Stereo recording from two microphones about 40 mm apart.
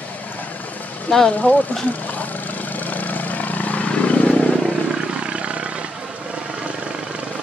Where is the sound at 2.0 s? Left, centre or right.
Left.